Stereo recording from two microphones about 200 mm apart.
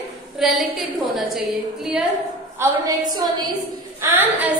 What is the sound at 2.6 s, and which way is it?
Speech, 20° right (ahead or behind).